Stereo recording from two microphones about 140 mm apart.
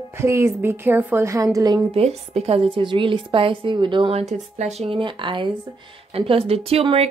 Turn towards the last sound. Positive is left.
turn(degrees=-45)  # may be behind; listen again after turning